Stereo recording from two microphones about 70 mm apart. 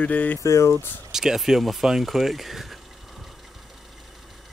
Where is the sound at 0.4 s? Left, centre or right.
Left.